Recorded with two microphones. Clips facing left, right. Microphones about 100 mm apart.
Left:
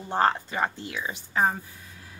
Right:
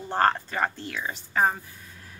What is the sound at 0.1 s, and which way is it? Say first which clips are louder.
Speech: even; 10° left (ahead or behind).